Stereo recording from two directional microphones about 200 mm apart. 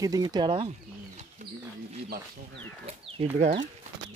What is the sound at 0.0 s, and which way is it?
Speech, 20° right (ahead or behind).